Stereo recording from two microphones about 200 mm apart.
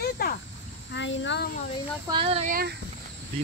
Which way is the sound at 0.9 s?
65° left (ahead or behind).